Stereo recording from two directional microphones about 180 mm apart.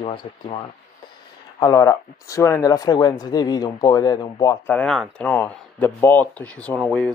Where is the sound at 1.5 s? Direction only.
20° left (ahead or behind).